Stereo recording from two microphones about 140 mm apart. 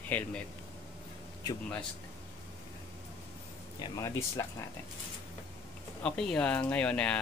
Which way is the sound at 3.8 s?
25° left (ahead or behind).